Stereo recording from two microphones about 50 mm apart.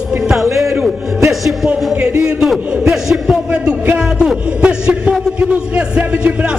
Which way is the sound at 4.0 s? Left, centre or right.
Centre.